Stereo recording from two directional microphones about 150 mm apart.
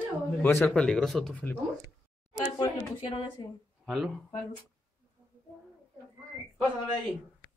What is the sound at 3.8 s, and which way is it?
Speech, centre (ahead or behind).